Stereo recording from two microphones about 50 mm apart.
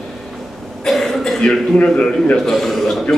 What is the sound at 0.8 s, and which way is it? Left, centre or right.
Cough, centre.